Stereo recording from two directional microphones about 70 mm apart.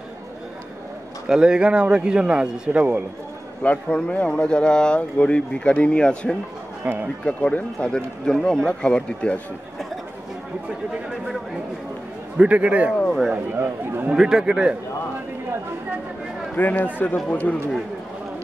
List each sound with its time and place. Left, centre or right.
1.3 s a man's voice: centre
3.6 s speech: centre
6.8 s speech: right
7.2 s speech: centre
12.4 s a man's voice: centre
13.3 s a man's voice: right
14.1 s a man's voice: centre
16.5 s a man's voice: left